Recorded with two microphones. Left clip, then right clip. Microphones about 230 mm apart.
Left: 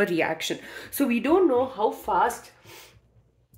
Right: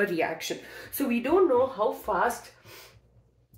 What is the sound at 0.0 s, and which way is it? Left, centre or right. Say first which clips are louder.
Speech: left 3 dB; left.